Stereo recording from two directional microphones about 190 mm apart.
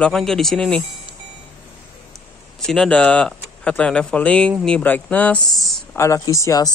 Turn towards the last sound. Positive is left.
turn(degrees=20)  # may be behind; listen again after turning